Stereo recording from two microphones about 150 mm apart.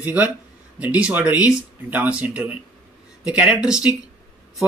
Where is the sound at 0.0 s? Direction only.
10° right (ahead or behind).